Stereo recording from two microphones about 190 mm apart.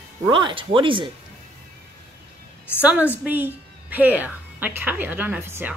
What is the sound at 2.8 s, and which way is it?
A woman's voice, 10° right (ahead or behind).